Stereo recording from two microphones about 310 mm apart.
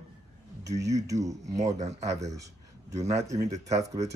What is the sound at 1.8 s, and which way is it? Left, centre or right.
Speech, right.